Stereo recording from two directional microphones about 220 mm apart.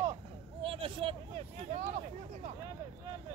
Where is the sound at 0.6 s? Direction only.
25° right (ahead or behind).